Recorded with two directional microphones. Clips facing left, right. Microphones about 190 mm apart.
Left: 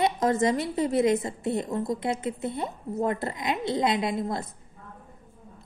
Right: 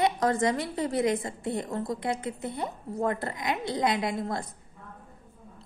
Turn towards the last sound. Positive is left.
turn(degrees=20)  # may be behind; listen again after turning